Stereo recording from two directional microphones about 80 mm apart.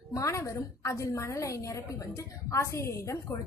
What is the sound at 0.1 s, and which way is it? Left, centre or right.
A woman's voice, left.